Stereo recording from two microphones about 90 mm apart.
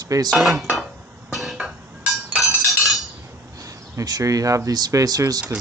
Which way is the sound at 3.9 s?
40° right (ahead or behind).